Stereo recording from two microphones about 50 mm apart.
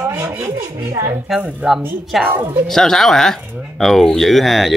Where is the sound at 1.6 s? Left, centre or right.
Right.